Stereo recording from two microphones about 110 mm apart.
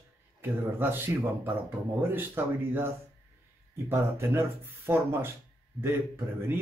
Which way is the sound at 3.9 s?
25° right (ahead or behind).